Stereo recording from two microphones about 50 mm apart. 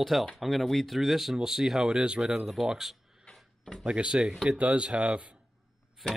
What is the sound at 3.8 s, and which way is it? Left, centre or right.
Speech, centre.